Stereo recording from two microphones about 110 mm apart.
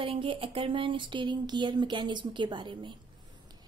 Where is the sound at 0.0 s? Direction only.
50° right (ahead or behind).